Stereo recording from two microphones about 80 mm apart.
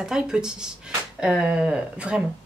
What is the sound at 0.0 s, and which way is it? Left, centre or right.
Speech, centre.